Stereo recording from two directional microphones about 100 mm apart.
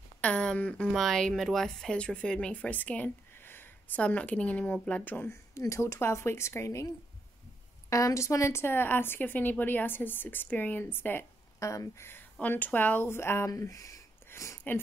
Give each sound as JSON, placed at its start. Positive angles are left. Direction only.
{"t": 0.2, "sound": "a woman's voice", "side_deg": 10}
{"t": 7.9, "sound": "a woman's voice", "side_deg": 30}
{"t": 11.6, "sound": "a woman's voice", "side_deg": 30}